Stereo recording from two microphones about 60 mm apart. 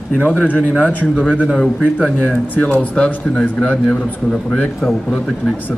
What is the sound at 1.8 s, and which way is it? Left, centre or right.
Speech, centre.